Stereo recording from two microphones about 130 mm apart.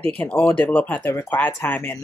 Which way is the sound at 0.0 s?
10° left (ahead or behind).